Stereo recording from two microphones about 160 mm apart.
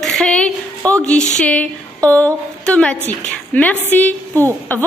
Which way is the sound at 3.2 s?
10° left (ahead or behind).